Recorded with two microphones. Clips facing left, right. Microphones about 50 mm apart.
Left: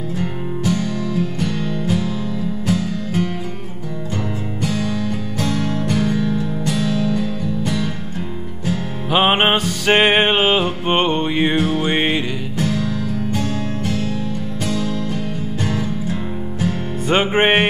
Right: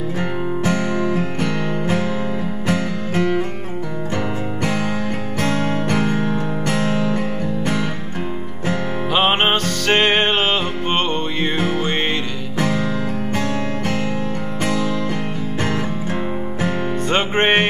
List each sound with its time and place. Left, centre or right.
0.2 s music: right
4.6 s music: right
9.1 s music: centre
11.5 s music: right
11.8 s music: centre
12.5 s music: right
17.1 s music: centre